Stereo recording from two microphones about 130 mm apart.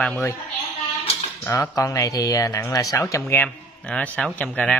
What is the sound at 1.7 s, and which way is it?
Speech, 25° left (ahead or behind).